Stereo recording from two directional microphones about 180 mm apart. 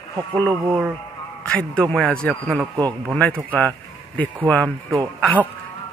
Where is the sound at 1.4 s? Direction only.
5° left (ahead or behind).